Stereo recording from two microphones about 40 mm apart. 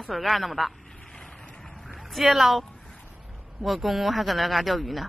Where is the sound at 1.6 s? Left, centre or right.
Centre.